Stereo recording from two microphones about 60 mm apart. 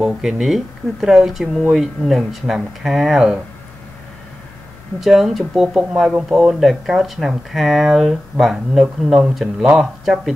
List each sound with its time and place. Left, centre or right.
0.0 s speech: centre
5.0 s speech: centre